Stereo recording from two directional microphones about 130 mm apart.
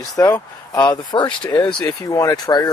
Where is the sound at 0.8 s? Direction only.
35° left (ahead or behind).